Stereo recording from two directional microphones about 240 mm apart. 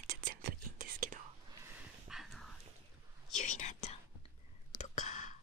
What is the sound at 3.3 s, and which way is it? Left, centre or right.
Whispering, left.